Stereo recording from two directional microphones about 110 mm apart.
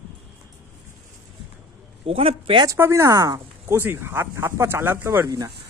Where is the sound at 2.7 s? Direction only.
25° right (ahead or behind).